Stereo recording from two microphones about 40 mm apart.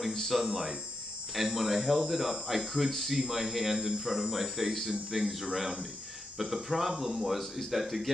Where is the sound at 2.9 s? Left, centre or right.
Centre.